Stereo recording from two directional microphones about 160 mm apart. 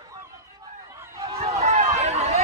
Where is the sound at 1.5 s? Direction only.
45° right (ahead or behind).